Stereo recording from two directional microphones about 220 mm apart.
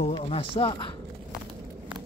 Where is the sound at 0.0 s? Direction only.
25° left (ahead or behind).